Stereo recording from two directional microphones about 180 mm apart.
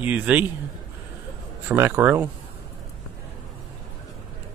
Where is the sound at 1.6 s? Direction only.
10° right (ahead or behind).